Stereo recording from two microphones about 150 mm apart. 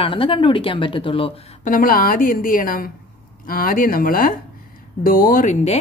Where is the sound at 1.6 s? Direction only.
70° left (ahead or behind).